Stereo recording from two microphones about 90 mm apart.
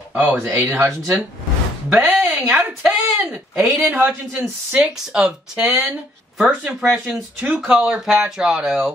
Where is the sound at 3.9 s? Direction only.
20° right (ahead or behind).